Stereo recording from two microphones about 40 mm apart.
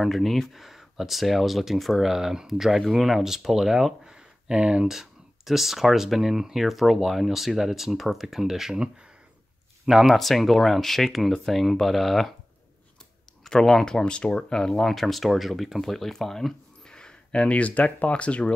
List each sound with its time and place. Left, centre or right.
0.0 s speech: centre
2.1 s speech: centre
4.0 s a sound: right
4.8 s speech: centre
10.0 s speech: centre
13.4 s speech: centre
14.9 s speech: centre
16.8 s speech: centre